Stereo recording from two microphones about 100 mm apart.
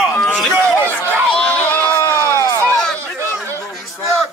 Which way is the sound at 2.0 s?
30° left (ahead or behind).